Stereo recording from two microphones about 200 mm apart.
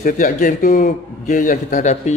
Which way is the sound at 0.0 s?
40° left (ahead or behind).